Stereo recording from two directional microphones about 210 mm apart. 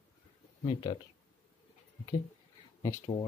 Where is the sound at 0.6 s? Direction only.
25° left (ahead or behind).